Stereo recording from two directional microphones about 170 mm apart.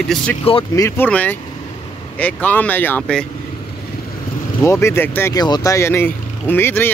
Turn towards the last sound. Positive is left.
turn(degrees=15)  # may be behind; listen again after turning